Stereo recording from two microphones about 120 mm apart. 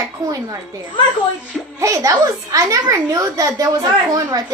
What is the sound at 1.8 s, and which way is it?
A child's voice, 25° right (ahead or behind).